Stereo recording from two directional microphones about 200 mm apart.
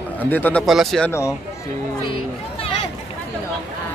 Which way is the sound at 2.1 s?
25° left (ahead or behind).